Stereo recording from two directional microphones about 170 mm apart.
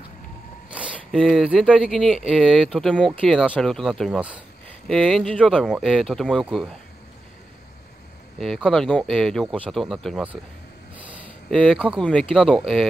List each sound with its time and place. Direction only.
0.7 s speech: 5° right (ahead or behind)
8.4 s speech: centre (ahead or behind)
11.5 s speech: 5° left (ahead or behind)